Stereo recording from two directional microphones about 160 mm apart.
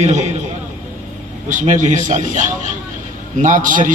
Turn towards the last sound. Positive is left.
turn(degrees=-55)  # may be behind; listen again after turning